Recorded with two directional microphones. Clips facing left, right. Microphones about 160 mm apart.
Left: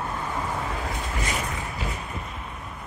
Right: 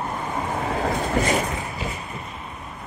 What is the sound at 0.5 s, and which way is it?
Vehicle, 50° right (ahead or behind).